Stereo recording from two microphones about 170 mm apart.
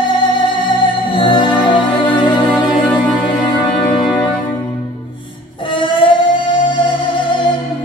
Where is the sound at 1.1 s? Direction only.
30° left (ahead or behind).